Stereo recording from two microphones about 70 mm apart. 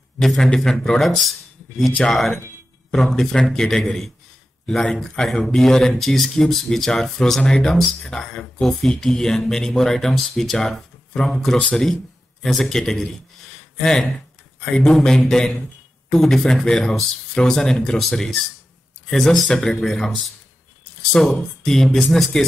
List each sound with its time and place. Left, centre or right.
0.2 s speech: centre
1.9 s speech: centre